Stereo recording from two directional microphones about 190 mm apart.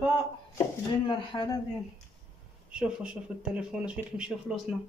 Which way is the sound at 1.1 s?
25° left (ahead or behind).